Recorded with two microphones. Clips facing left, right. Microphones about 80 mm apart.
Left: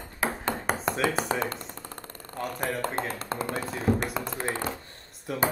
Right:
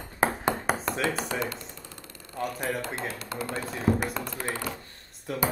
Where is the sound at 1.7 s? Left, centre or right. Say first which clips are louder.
Left 4 dB; left.